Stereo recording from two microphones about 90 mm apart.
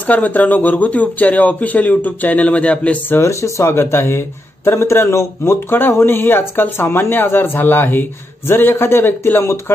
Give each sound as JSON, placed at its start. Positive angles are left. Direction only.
{"t": 0.0, "sound": "speech", "side_deg": 20}
{"t": 3.2, "sound": "speech", "side_deg": 35}